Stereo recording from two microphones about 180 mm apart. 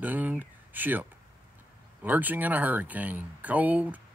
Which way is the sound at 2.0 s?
10° right (ahead or behind).